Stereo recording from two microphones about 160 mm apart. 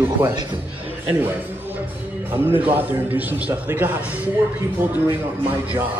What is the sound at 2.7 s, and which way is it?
Speech, 10° right (ahead or behind).